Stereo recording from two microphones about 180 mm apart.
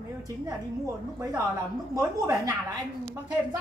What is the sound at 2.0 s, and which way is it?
Speech, 20° right (ahead or behind).